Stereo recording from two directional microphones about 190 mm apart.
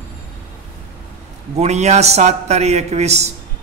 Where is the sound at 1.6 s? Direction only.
35° right (ahead or behind).